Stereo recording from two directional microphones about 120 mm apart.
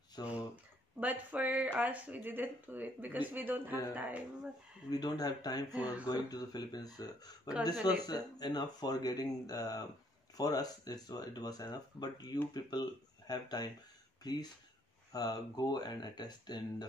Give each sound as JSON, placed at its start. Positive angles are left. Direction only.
{"t": 0.2, "sound": "speech", "side_deg": 35}
{"t": 0.9, "sound": "speech", "side_deg": -15}
{"t": 4.8, "sound": "speech", "side_deg": 35}
{"t": 5.7, "sound": "speech", "side_deg": -10}
{"t": 6.0, "sound": "speech", "side_deg": 35}